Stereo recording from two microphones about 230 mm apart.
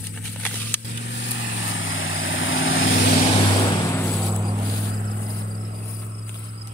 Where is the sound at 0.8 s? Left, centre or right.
Left.